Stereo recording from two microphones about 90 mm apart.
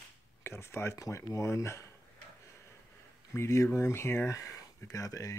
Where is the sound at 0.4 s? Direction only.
30° left (ahead or behind).